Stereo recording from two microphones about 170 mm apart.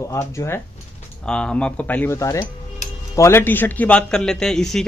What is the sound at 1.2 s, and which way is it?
A man's voice, 5° left (ahead or behind).